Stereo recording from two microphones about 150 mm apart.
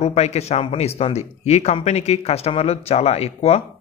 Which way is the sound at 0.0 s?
45° left (ahead or behind).